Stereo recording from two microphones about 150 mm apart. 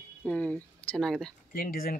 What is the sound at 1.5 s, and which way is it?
Speech, 70° left (ahead or behind).